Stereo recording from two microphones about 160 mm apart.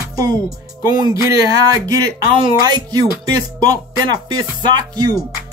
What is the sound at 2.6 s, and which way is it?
Music, 25° right (ahead or behind).